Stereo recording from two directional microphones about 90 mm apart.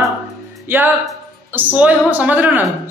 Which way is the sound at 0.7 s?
20° right (ahead or behind).